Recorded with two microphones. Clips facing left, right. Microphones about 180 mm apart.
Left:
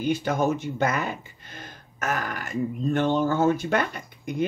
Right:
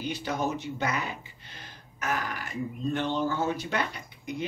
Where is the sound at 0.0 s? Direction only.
50° left (ahead or behind).